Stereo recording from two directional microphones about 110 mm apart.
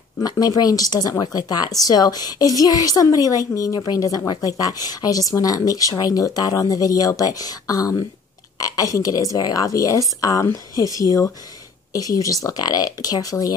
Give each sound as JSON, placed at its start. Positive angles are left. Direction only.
{"t": 0.2, "sound": "speech", "side_deg": 35}
{"t": 11.9, "sound": "speech", "side_deg": 30}